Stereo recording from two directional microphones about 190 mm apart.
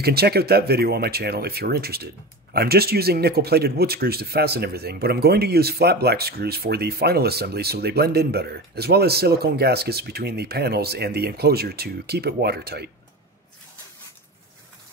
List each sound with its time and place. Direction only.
0.0 s speech: 55° right (ahead or behind)